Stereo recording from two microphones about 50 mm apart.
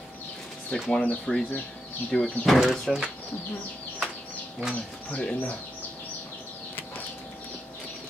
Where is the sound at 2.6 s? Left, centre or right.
Centre.